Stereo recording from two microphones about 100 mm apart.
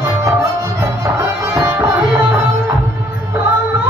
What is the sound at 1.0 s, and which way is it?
Tabla, 25° right (ahead or behind).